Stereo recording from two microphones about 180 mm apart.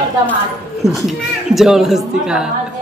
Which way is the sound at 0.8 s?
Centre (ahead or behind).